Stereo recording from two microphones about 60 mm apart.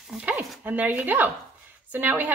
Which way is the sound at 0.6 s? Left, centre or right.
Right.